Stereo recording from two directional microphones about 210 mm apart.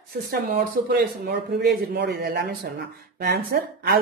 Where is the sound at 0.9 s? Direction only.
50° right (ahead or behind).